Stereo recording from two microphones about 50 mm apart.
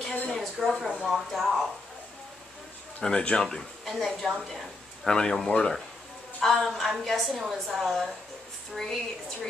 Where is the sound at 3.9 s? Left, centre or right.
Centre.